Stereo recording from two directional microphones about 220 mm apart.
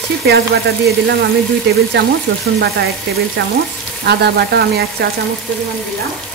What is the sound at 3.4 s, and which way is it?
Frying, 50° right (ahead or behind).